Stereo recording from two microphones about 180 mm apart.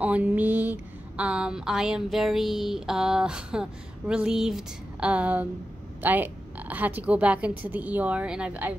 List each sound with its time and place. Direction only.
0.0 s a woman's voice: 10° right (ahead or behind)